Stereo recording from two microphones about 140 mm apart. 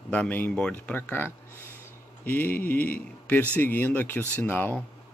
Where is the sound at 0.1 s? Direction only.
10° left (ahead or behind).